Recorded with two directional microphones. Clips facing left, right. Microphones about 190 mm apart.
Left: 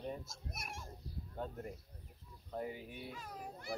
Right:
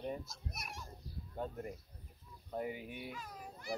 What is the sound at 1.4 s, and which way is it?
Speech, 10° right (ahead or behind).